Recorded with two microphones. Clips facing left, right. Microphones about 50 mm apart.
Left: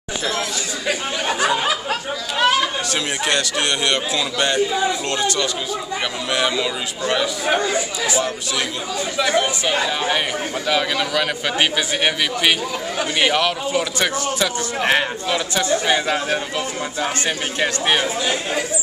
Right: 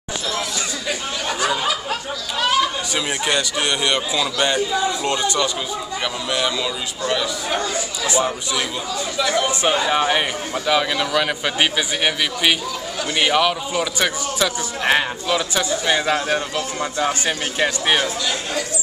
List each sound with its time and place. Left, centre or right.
0.8 s a sound: centre
2.9 s a man's voice: centre
4.6 s a man's voice: centre
5.0 s a man's voice: centre
6.3 s a man's voice: centre
9.1 s a man's voice: centre
10.7 s a man's voice: centre
18.0 s a man's voice: centre